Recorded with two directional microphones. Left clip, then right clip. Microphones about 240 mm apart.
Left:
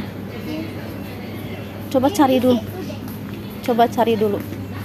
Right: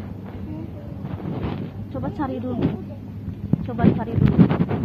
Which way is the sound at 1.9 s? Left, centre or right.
Left.